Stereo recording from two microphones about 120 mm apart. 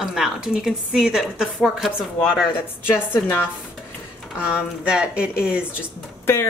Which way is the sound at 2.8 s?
15° left (ahead or behind).